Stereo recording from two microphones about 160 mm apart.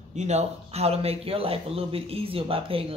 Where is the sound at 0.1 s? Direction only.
45° right (ahead or behind).